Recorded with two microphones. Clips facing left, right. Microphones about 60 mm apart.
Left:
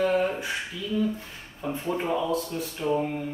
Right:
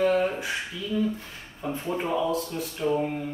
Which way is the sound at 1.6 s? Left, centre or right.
Centre.